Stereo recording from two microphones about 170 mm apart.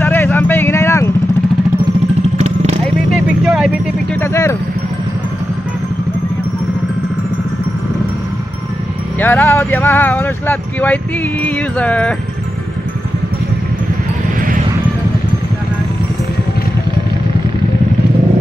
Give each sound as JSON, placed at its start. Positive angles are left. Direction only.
{"t": 0.0, "sound": "vehicle", "side_deg": 15}
{"t": 2.3, "sound": "vehicle", "side_deg": -40}
{"t": 3.4, "sound": "vehicle", "side_deg": 0}
{"t": 4.2, "sound": "vehicle", "side_deg": 15}
{"t": 9.2, "sound": "speech", "side_deg": 10}